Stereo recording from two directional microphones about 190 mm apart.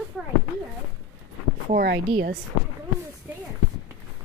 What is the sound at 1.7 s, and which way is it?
Speech, 55° right (ahead or behind).